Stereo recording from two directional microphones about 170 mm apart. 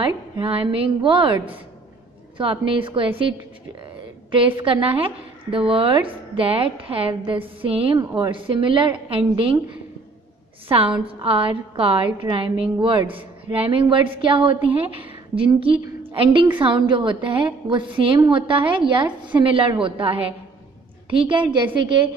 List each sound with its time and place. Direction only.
0.0 s a woman's voice: 35° right (ahead or behind)
11.1 s a woman's voice: 30° right (ahead or behind)